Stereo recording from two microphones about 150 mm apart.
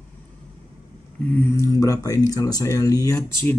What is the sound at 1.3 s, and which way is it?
Speech, 15° left (ahead or behind).